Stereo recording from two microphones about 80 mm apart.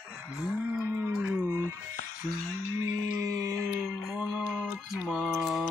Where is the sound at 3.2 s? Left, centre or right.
Right.